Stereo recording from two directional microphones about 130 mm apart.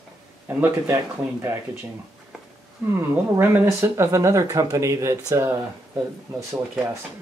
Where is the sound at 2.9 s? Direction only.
15° right (ahead or behind).